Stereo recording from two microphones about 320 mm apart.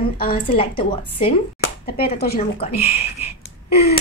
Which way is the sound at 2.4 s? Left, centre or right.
Centre.